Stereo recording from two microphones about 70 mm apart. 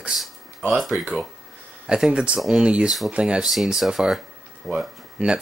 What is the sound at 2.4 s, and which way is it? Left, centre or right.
Speech, centre.